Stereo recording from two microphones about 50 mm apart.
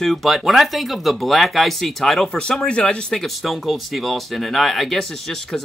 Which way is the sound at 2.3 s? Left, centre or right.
Centre.